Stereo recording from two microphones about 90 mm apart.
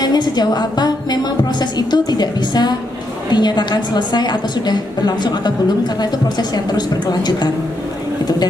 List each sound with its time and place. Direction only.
0.0 s a woman's voice: 50° left (ahead or behind)